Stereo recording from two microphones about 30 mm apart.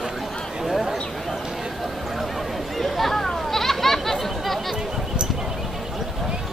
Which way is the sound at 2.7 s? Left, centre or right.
Centre.